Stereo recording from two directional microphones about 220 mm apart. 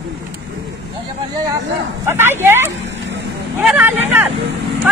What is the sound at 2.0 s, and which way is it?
Speech, 10° right (ahead or behind).